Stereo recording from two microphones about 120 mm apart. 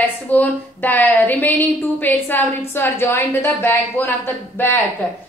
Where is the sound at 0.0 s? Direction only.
15° left (ahead or behind).